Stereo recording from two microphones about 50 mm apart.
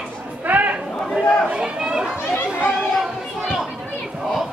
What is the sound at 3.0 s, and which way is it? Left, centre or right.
Chatter, centre.